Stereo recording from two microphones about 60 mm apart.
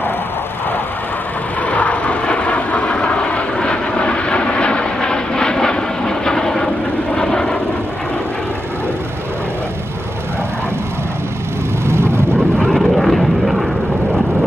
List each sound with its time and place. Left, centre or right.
1.7 s vehicle: left
11.8 s vehicle: right
12.5 s vehicle: centre
12.8 s vehicle: centre